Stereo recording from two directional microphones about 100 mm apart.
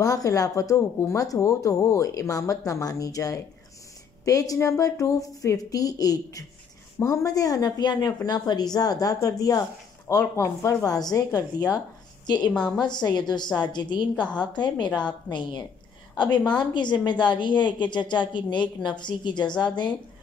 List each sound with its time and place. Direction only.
0.0 s a woman's voice: 35° left (ahead or behind)
14.9 s a woman's voice: 10° left (ahead or behind)
15.2 s a woman's voice: 45° left (ahead or behind)